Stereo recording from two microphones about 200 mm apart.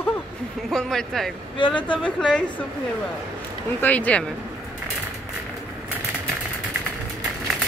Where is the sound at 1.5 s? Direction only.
25° left (ahead or behind).